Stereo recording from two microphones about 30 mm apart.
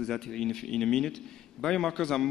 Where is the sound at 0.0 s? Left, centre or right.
Centre.